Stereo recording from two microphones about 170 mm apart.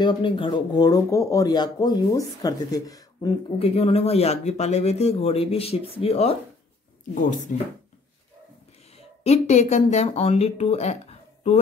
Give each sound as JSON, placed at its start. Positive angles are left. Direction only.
{"t": 0.0, "sound": "speech", "side_deg": 30}
{"t": 7.2, "sound": "speech", "side_deg": 50}
{"t": 8.9, "sound": "speech", "side_deg": 40}